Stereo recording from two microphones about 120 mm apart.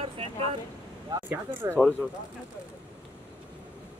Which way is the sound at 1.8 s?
10° left (ahead or behind).